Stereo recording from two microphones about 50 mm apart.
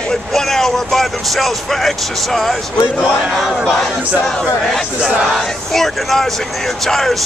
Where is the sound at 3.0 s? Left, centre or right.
Centre.